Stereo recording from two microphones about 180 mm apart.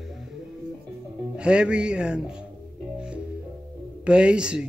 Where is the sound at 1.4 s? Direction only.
5° right (ahead or behind).